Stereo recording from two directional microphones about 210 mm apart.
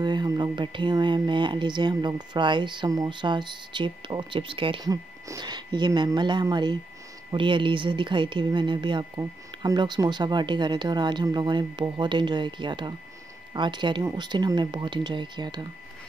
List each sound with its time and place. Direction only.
0.0 s speech: 20° right (ahead or behind)